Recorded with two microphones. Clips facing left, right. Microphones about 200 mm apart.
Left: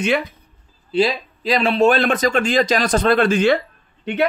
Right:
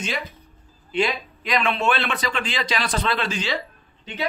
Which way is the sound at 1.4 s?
30° left (ahead or behind).